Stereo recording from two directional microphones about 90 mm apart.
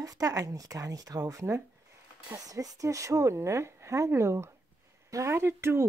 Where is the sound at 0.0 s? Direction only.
40° right (ahead or behind).